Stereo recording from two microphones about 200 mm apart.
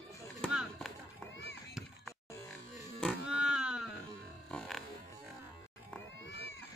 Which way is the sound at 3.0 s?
Centre (ahead or behind).